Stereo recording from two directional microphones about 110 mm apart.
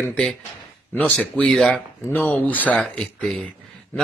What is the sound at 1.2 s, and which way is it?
Speech, 5° left (ahead or behind).